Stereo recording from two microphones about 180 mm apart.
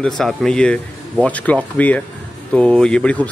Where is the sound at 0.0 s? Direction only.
Centre (ahead or behind).